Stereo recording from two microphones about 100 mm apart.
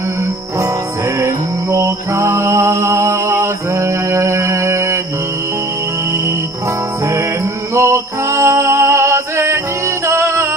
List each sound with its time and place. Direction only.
0.2 s music: 30° right (ahead or behind)
7.7 s music: 30° right (ahead or behind)